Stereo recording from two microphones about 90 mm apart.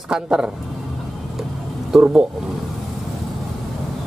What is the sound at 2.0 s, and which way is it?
Speech, 20° right (ahead or behind).